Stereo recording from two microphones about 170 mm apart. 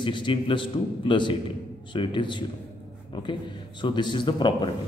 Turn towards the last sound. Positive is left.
turn(degrees=25)  # may be behind; listen again after turning